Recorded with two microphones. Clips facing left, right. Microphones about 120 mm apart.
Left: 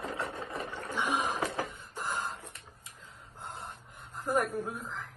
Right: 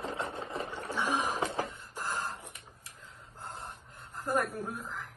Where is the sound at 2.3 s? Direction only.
15° right (ahead or behind).